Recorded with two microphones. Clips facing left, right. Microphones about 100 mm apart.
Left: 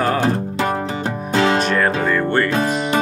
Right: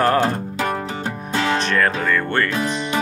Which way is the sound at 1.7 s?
15° left (ahead or behind).